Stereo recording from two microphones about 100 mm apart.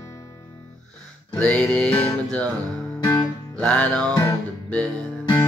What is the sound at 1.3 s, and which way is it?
Music, 10° left (ahead or behind).